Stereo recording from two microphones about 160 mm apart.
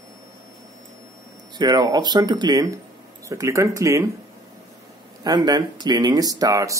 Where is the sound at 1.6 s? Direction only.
25° right (ahead or behind).